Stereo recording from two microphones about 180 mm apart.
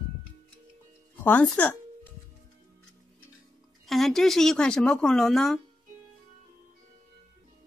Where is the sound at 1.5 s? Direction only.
10° left (ahead or behind).